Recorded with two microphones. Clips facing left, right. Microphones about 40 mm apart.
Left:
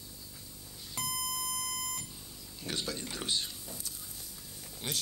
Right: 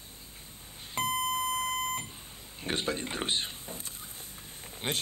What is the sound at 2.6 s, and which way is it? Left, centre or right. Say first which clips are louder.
Speech: right 5 dB; right.